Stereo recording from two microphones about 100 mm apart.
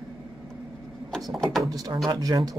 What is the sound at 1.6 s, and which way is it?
Speech, 40° right (ahead or behind).